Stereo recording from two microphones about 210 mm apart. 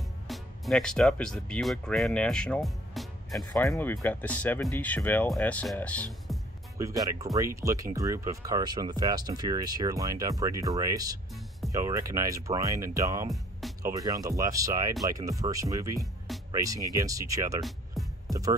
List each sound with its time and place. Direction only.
0.3 s speech: centre (ahead or behind)
6.8 s speech: 15° right (ahead or behind)
13.3 s music: centre (ahead or behind)
13.8 s speech: 15° right (ahead or behind)
17.6 s music: centre (ahead or behind)
18.3 s speech: 15° right (ahead or behind)